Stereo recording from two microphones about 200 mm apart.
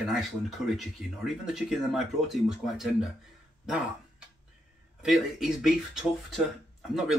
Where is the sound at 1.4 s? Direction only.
Centre (ahead or behind).